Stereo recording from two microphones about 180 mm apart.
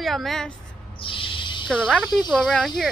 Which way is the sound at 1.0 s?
30° left (ahead or behind).